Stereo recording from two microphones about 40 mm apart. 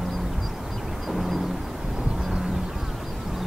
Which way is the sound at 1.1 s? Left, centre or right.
Centre.